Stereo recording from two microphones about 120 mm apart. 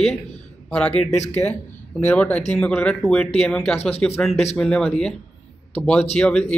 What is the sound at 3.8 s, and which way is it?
Speech, 60° left (ahead or behind).